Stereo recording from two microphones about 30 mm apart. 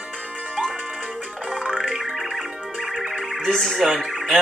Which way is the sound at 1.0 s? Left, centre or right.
Right.